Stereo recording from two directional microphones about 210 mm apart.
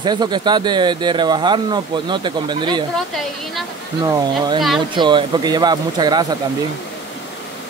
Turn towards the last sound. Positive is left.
turn(degrees=-20)  # may be behind; listen again after turning